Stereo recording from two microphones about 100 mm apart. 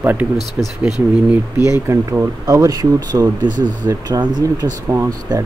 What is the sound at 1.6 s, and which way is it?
Speech, 30° right (ahead or behind).